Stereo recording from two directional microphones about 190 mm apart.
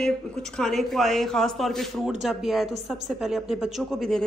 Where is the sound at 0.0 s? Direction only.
5° left (ahead or behind).